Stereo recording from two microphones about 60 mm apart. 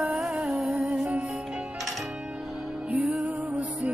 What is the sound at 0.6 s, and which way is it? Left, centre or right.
Music, centre.